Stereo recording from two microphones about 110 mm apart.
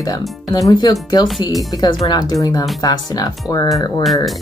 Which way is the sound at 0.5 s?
30° left (ahead or behind).